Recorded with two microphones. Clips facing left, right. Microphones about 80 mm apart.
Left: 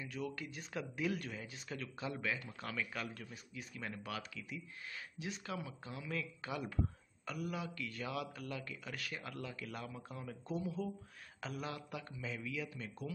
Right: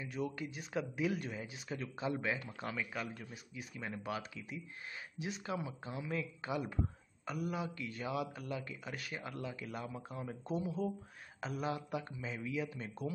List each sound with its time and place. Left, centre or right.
0.0 s speech: right